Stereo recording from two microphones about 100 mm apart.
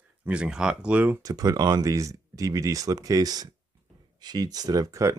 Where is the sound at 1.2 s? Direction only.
35° right (ahead or behind).